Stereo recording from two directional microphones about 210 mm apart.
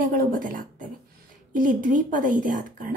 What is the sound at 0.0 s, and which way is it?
A woman's voice, 40° right (ahead or behind).